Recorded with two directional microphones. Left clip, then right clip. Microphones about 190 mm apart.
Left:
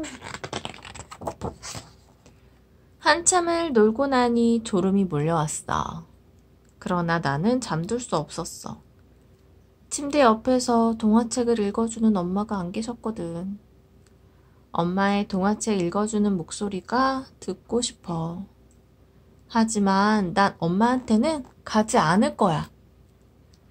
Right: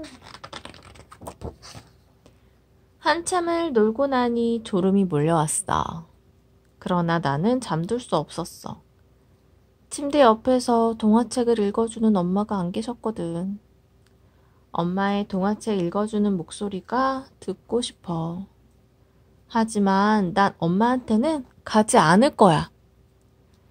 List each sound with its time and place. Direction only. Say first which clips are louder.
1.4 s a sound: left 5 dB; 15° left (ahead or behind)
3.0 s speech: left 2 dB; 30° right (ahead or behind)
9.8 s speech: right 2 dB; 35° right (ahead or behind)
14.7 s speech: left 1 dB; 30° right (ahead or behind)
19.5 s speech: right 1 dB; 35° right (ahead or behind)